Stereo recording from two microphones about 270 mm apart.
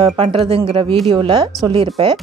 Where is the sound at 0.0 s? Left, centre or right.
Centre.